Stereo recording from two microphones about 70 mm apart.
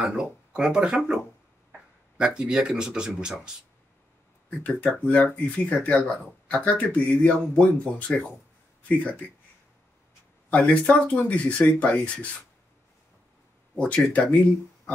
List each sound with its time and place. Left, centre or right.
0.0 s speech: centre
4.5 s speech: centre
10.5 s speech: centre
13.7 s speech: centre